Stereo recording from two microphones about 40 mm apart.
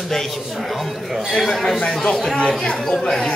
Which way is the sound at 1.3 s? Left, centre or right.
Centre.